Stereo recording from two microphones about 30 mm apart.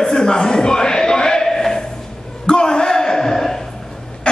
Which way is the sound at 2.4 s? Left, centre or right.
Left.